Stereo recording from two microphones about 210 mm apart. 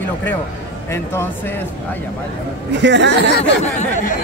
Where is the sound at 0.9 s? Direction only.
10° left (ahead or behind).